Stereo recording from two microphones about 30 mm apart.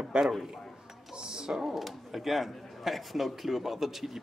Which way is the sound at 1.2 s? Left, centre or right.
Right.